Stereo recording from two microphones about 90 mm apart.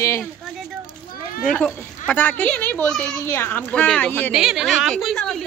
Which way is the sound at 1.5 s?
10° left (ahead or behind).